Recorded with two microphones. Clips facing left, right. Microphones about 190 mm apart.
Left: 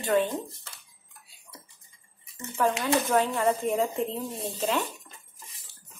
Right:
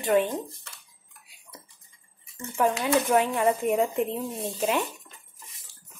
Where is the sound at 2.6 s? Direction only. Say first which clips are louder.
Right 2 dB; 15° right (ahead or behind).